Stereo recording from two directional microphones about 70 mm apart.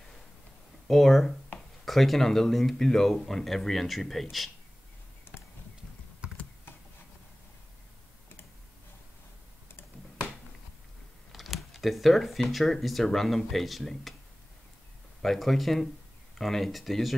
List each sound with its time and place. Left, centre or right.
0.8 s speech: centre
5.3 s a sound: left
6.2 s computer keyboard: centre
11.3 s speech: centre
15.2 s speech: centre